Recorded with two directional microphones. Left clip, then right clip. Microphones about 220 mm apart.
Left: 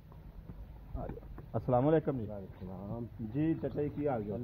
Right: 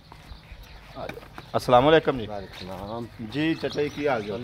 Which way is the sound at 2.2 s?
85° right.